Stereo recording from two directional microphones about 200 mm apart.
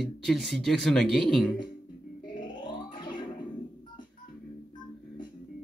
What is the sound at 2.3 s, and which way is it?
Music, 20° left (ahead or behind).